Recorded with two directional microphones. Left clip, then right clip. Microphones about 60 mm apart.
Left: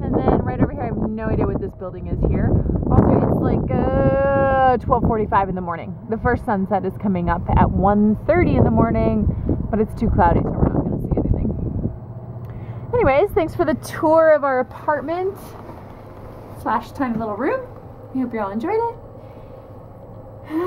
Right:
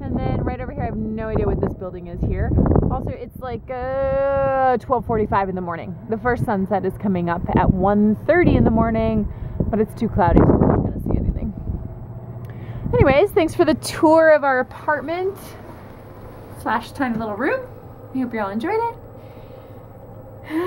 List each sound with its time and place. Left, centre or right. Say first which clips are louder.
0.0 s speech: left 6 dB; right
11.1 s a sound: left 3 dB; right
12.9 s a woman's voice: right 1 dB; right
14.3 s speech: right 1 dB; right
14.9 s a woman's voice: left 1 dB; centre
16.6 s a woman's voice: even; centre